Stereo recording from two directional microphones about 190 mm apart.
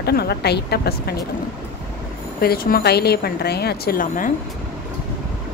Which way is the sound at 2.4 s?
50° left (ahead or behind).